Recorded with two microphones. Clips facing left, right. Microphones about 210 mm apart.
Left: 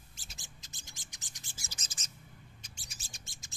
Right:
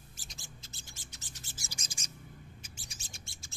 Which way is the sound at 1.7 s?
10° right (ahead or behind).